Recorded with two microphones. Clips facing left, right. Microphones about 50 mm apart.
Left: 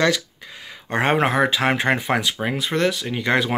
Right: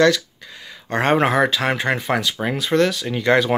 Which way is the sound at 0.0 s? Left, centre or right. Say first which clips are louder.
Right 4 dB; left.